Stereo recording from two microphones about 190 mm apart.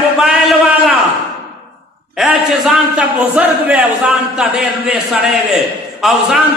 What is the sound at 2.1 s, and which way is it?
A man's voice, centre (ahead or behind).